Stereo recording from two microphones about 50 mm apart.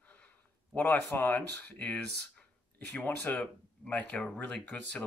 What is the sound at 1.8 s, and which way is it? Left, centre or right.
Speech, left.